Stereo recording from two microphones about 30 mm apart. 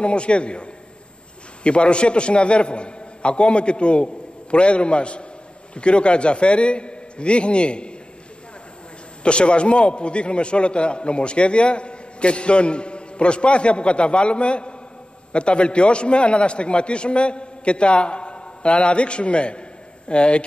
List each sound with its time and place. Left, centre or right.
0.0 s a man's voice: left
9.2 s a man's voice: left